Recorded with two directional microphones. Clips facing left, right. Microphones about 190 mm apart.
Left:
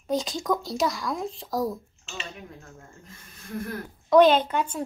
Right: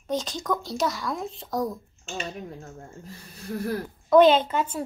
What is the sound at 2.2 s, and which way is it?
Speech, 40° right (ahead or behind).